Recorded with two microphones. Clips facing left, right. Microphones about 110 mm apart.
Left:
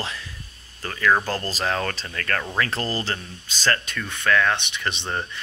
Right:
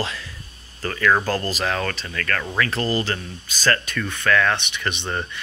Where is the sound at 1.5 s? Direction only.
30° left (ahead or behind).